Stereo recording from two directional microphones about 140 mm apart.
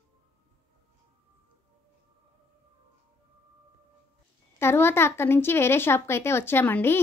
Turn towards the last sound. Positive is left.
turn(degrees=15)  # may be behind; listen again after turning